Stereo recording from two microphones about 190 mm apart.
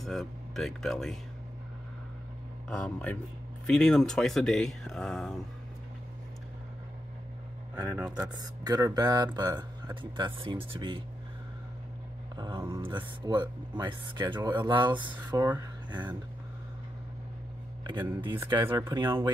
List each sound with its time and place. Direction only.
0.0 s speech: centre (ahead or behind)
2.7 s speech: 5° left (ahead or behind)
7.7 s speech: 15° right (ahead or behind)
12.4 s speech: 20° right (ahead or behind)
15.1 s speech: 15° right (ahead or behind)
18.3 s speech: 15° right (ahead or behind)